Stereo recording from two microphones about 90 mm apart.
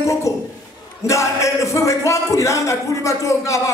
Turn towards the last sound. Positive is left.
turn(degrees=35)  # may be behind; listen again after turning